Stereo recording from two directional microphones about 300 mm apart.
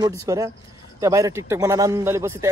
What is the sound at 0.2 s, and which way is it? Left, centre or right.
A man's voice, centre.